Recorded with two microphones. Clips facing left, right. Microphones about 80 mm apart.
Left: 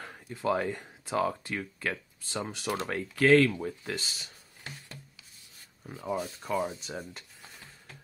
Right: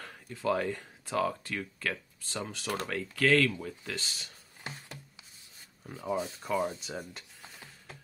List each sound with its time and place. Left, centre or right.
0.0 s speech: centre
3.9 s speech: centre
6.0 s speech: centre
6.4 s speech: centre